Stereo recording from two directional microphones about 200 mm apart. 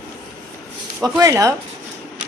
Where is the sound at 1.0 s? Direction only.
15° right (ahead or behind).